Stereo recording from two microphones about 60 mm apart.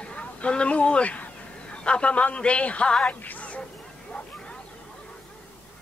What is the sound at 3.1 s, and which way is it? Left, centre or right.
Music, left.